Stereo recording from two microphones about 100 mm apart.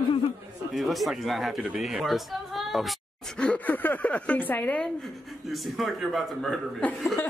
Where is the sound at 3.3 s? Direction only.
15° left (ahead or behind).